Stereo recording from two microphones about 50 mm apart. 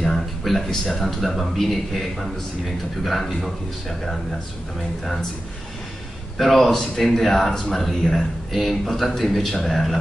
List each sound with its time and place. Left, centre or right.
0.0 s speech: centre
6.3 s speech: centre